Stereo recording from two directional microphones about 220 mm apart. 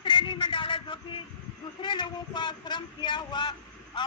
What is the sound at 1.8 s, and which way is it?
A man's voice, 20° left (ahead or behind).